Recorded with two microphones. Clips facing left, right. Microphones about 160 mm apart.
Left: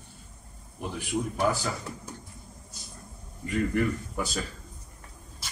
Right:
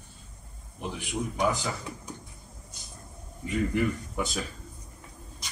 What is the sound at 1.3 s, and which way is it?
Speech, 15° right (ahead or behind).